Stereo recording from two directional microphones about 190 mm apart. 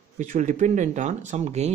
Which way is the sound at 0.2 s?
40° right (ahead or behind).